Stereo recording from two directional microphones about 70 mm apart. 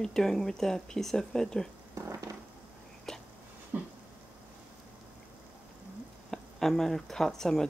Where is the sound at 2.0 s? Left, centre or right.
Right.